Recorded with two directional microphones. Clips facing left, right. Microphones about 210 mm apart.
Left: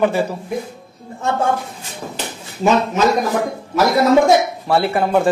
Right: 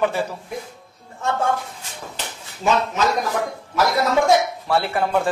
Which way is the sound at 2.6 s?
20° left (ahead or behind).